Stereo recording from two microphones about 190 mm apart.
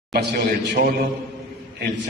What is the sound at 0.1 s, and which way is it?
Speech, 55° right (ahead or behind).